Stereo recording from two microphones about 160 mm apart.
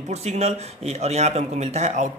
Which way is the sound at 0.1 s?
40° right (ahead or behind).